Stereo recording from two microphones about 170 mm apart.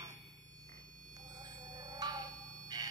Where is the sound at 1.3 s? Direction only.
25° right (ahead or behind).